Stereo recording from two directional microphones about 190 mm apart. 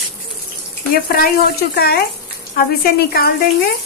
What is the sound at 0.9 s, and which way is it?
A woman's voice, 50° left (ahead or behind).